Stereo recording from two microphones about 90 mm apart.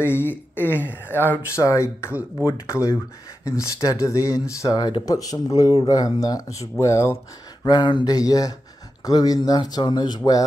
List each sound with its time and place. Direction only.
0.0 s speech: 25° left (ahead or behind)
1.6 s speech: 35° left (ahead or behind)
4.7 s speech: 50° left (ahead or behind); by 7.2 s 35° left (ahead or behind)
7.6 s speech: 55° left (ahead or behind)